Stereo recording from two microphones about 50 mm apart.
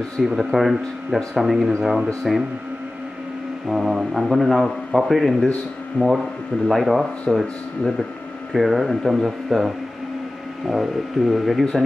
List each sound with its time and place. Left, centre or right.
0.2 s a man's voice: centre
3.6 s a man's voice: centre
6.0 s speech: left
6.7 s a man's voice: centre
8.5 s a man's voice: centre